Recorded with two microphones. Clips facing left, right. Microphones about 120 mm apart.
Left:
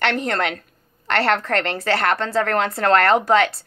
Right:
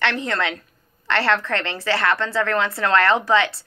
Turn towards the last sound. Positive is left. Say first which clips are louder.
# left 2 dB
turn(degrees=50)  # may be behind; listen again after turning